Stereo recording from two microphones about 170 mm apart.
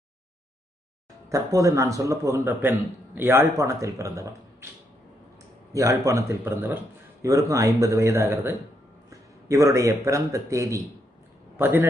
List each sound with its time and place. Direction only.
1.3 s a man's voice: 20° right (ahead or behind)
5.7 s a man's voice: 20° right (ahead or behind)